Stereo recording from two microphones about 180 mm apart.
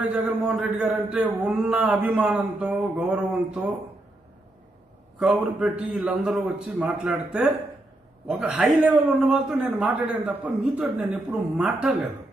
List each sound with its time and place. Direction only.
0.0 s a man's voice: 5° right (ahead or behind)
5.2 s a man's voice: 5° right (ahead or behind)